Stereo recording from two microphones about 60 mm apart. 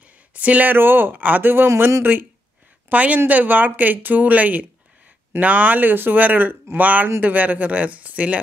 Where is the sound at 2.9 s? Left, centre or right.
Right.